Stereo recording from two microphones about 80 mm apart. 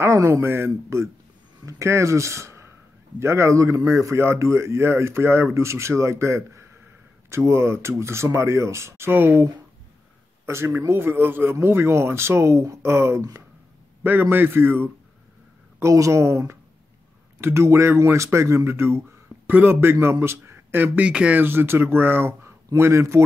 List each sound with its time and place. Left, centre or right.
0.0 s speech: right
10.4 s speech: right
14.3 s speech: right
15.8 s speech: right; by 21.4 s centre
21.4 s speech: right